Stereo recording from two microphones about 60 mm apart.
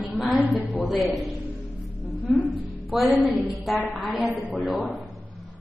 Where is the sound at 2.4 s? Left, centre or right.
Right.